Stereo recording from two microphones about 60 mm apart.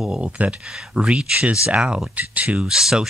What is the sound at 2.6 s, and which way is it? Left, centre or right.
Speech, centre.